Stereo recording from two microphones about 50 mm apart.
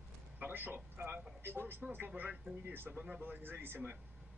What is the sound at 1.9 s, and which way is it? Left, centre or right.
A man's voice, right.